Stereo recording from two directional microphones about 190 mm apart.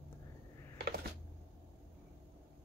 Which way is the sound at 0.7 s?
55° right (ahead or behind).